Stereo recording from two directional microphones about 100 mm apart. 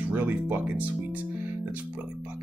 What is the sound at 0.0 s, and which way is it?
Speech, 15° right (ahead or behind).